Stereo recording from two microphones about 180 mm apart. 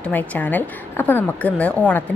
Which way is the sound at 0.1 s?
10° left (ahead or behind).